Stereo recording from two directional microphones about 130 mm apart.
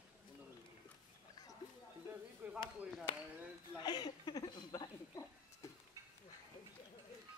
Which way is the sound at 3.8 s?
30° left (ahead or behind).